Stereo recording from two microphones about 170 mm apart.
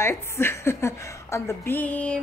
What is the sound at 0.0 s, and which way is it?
A woman's voice, 15° left (ahead or behind).